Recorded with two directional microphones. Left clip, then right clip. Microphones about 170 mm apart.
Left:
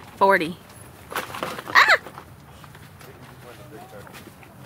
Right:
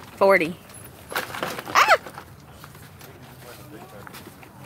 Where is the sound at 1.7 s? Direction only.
5° right (ahead or behind).